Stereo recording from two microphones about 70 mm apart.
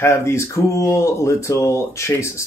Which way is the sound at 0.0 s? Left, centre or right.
Left.